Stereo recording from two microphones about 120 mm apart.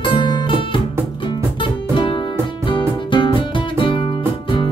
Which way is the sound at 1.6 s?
45° left (ahead or behind).